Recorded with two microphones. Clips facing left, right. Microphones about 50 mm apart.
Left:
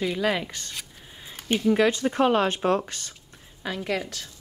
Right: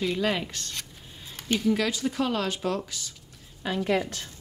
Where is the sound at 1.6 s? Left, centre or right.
Left.